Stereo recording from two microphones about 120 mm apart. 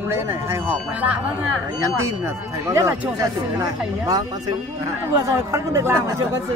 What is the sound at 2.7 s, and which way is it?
Speech, 25° right (ahead or behind).